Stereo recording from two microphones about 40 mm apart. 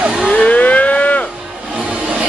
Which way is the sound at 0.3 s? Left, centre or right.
Left.